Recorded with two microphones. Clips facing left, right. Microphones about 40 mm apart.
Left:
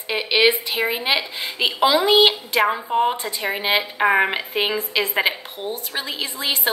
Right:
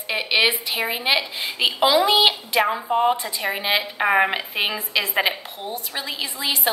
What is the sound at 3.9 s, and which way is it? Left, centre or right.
A woman's voice, centre.